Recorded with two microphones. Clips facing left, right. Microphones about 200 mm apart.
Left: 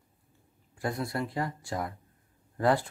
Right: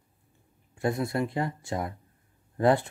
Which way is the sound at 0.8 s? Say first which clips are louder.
Right 4 dB; 25° right (ahead or behind).